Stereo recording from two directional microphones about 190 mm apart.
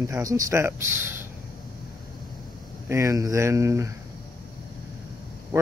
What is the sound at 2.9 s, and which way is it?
Speech, 15° right (ahead or behind).